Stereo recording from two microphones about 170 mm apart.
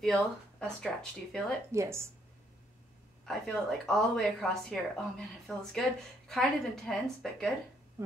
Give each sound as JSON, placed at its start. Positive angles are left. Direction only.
{"t": 0.0, "sound": "a woman's voice", "side_deg": 5}
{"t": 1.7, "sound": "speech", "side_deg": -15}
{"t": 3.3, "sound": "a woman's voice", "side_deg": 0}